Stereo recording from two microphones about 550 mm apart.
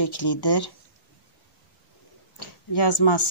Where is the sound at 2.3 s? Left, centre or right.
Left.